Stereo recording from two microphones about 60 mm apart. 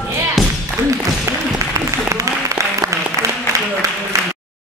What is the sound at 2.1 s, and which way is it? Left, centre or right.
Applause, right.